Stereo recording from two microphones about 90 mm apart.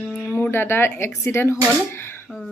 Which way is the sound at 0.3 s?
25° left (ahead or behind).